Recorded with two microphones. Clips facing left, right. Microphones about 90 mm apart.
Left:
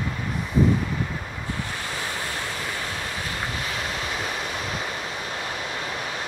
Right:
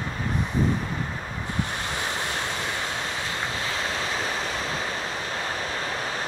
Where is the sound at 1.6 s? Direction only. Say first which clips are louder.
Right 1 dB; 20° right (ahead or behind).